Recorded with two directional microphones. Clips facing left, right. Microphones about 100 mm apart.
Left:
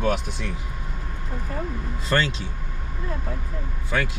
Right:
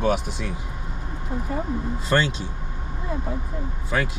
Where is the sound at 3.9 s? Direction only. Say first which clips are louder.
Right 1 dB; 5° right (ahead or behind).